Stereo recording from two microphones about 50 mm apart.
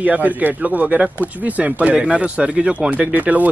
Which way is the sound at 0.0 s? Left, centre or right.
Right.